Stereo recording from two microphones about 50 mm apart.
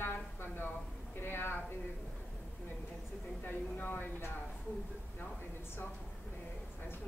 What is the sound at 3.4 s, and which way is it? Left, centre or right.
Speech, left.